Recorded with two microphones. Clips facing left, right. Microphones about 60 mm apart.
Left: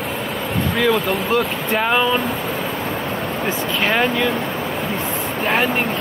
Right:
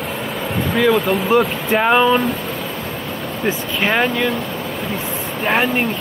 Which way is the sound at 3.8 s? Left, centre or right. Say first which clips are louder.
Right 1 dB; centre.